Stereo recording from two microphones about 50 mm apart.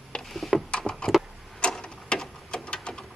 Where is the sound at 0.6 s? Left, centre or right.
Centre.